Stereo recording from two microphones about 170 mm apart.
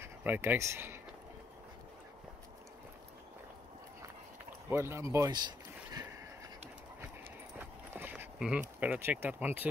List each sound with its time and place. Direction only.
0.0 s speech: 15° right (ahead or behind)
4.6 s speech: 15° right (ahead or behind)
7.5 s a sound: 10° right (ahead or behind)